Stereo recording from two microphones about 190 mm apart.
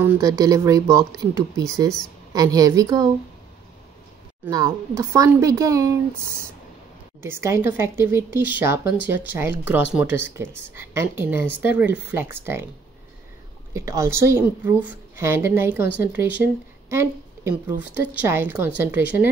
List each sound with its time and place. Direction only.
0.0 s a woman's voice: 15° right (ahead or behind)
4.5 s a woman's voice: 20° right (ahead or behind)
13.7 s a woman's voice: 15° right (ahead or behind)